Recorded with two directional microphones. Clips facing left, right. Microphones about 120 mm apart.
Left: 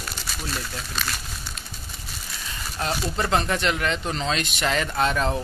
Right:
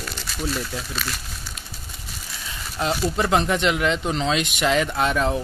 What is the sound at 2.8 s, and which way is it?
Speech, 15° right (ahead or behind).